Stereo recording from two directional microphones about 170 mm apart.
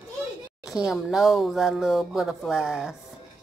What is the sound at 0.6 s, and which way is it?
Speech, centre (ahead or behind).